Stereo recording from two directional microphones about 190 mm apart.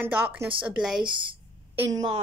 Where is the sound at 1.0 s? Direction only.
25° right (ahead or behind).